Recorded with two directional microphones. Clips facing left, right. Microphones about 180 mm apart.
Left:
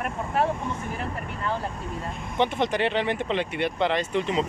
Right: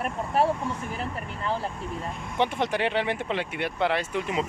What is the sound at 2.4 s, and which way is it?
Speech, 10° right (ahead or behind).